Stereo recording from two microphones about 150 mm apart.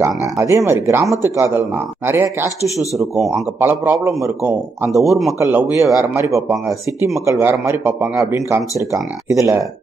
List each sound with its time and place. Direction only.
0.0 s speech: 20° right (ahead or behind)
3.0 s a man's voice: centre (ahead or behind)
3.5 s speech: 15° right (ahead or behind)
5.0 s a man's voice: centre (ahead or behind)
5.4 s speech: 15° right (ahead or behind)